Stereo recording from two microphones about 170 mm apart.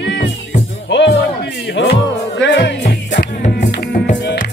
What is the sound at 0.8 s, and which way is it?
Music, 90° left.